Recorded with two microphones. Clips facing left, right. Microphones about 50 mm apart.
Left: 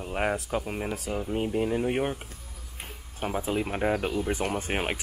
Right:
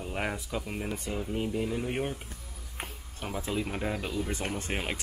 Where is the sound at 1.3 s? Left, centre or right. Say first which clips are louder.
Left 5 dB; left.